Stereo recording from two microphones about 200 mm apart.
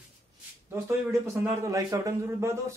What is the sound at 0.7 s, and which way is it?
A man's voice, 15° right (ahead or behind).